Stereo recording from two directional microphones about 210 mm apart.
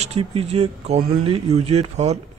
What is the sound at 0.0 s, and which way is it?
Speech, 30° right (ahead or behind).